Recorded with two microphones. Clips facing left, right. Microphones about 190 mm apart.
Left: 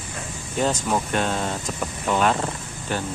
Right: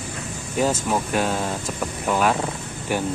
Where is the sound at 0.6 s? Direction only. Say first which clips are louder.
Right 1 dB; 5° right (ahead or behind).